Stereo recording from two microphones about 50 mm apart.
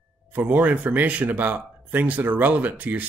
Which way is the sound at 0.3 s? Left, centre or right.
Right.